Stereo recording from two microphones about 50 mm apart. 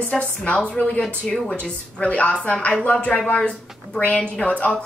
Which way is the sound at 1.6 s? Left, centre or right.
Left.